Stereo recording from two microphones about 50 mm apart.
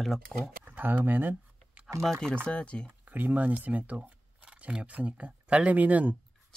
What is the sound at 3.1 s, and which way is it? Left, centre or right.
Speech, right.